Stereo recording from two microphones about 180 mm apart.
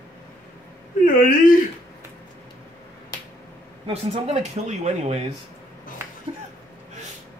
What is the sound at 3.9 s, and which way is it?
Speech, 35° right (ahead or behind).